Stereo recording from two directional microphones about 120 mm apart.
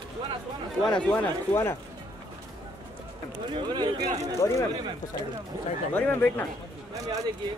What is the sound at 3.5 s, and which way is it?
Speech, 40° right (ahead or behind).